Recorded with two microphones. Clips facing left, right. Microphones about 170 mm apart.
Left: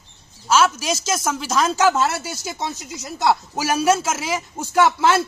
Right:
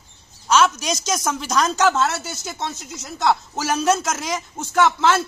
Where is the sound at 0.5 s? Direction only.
5° left (ahead or behind).